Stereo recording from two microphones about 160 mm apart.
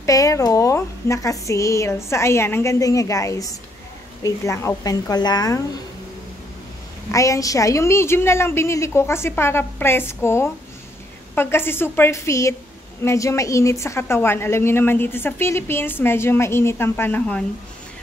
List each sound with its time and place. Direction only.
0.0 s a woman's voice: 20° left (ahead or behind)
7.1 s a woman's voice: 20° left (ahead or behind)